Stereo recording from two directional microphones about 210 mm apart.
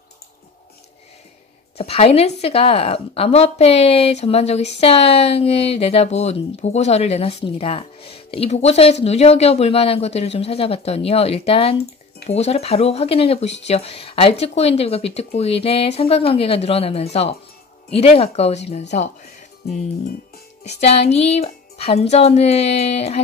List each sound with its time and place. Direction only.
1.8 s a woman's voice: 30° left (ahead or behind)
20.6 s a woman's voice: 30° left (ahead or behind)